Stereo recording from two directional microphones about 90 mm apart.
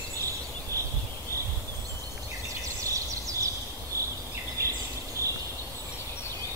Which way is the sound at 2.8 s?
35° right (ahead or behind).